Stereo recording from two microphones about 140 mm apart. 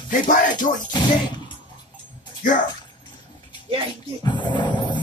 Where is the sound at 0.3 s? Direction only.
70° left (ahead or behind).